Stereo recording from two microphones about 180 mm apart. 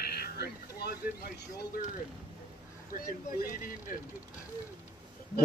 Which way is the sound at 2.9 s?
50° left (ahead or behind).